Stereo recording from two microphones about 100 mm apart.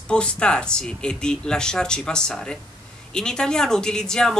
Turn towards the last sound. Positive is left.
turn(degrees=5)  # may be behind; listen again after turning